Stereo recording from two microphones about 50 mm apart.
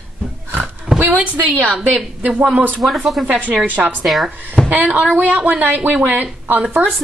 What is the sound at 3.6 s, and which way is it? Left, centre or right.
A woman's voice, right.